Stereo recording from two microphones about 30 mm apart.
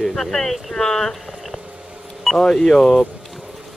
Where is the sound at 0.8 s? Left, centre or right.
Centre.